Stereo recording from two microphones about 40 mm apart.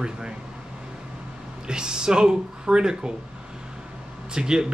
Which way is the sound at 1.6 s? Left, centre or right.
Right.